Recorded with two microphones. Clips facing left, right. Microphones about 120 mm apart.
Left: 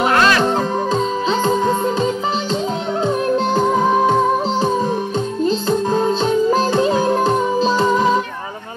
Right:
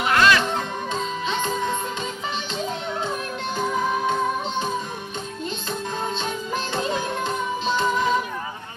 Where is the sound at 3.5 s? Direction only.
55° left (ahead or behind).